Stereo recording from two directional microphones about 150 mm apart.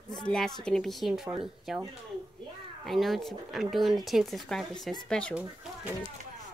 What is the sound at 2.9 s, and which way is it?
Speech, centre (ahead or behind).